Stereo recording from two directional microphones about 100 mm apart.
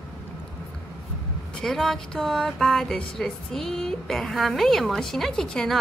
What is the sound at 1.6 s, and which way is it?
Speech, 5° left (ahead or behind).